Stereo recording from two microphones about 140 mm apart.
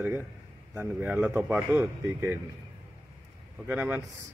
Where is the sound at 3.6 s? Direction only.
15° right (ahead or behind).